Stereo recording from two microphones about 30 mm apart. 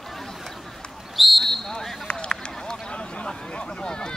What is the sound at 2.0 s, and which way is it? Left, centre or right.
Run, left.